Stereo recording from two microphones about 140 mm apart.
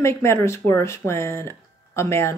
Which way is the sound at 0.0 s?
20° left (ahead or behind).